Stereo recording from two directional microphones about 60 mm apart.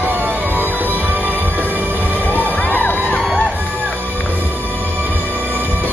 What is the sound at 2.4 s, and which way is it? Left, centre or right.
Crowd, left.